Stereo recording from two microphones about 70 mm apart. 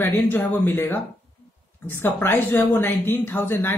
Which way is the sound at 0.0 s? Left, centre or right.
Left.